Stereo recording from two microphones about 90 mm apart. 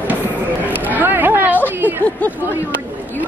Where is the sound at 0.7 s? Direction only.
20° right (ahead or behind).